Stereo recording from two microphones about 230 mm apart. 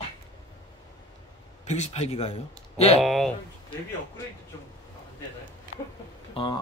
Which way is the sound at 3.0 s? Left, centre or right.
Centre.